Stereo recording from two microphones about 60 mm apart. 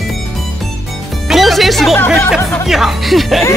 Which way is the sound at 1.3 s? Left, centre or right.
Centre.